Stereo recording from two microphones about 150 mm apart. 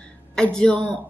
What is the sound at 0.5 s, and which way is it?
Speech, 5° left (ahead or behind).